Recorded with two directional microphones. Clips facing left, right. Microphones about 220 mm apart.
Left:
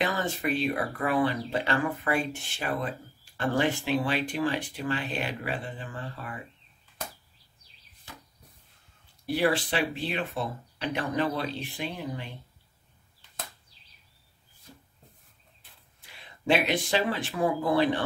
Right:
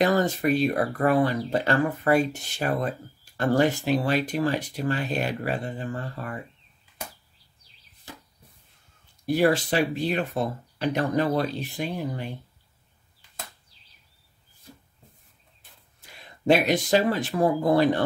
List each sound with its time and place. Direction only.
0.0 s speech: 40° right (ahead or behind)
9.2 s speech: 45° right (ahead or behind)
16.4 s speech: 40° right (ahead or behind)